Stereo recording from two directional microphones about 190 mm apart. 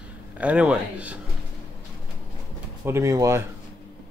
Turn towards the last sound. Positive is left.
turn(degrees=-15)  # may be behind; listen again after turning